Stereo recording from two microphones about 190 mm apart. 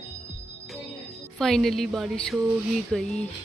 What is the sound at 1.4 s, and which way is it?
A woman's voice, centre (ahead or behind).